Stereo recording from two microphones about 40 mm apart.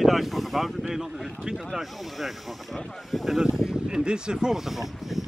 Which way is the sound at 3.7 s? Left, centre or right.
Centre.